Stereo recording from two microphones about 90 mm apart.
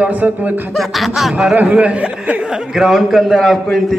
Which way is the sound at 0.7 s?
Centre (ahead or behind).